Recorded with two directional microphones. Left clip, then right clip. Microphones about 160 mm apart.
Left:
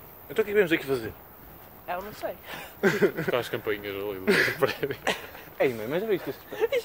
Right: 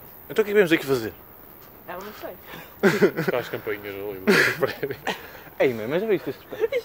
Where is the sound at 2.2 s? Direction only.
60° left (ahead or behind).